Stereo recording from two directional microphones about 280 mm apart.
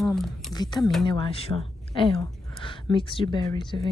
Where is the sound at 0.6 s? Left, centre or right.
Centre.